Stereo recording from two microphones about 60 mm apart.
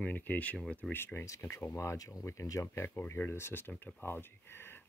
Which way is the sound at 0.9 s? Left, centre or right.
Left.